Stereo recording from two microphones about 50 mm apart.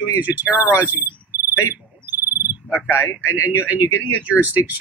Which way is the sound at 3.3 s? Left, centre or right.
Right.